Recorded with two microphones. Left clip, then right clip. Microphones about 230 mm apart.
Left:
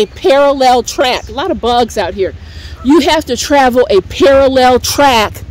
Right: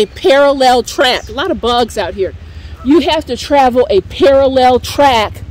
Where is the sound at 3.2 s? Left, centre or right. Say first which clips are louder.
Left 1 dB; left.